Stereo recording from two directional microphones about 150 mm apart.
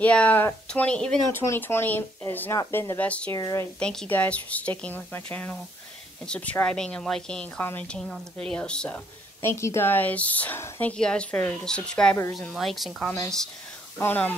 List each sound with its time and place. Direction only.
0.0 s a woman's voice: 10° left (ahead or behind)
3.3 s speech: 20° left (ahead or behind)
3.8 s a woman's voice: 5° left (ahead or behind)
13.9 s a woman's voice: 10° left (ahead or behind)